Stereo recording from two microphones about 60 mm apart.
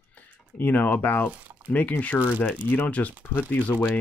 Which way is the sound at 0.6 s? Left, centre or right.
Left.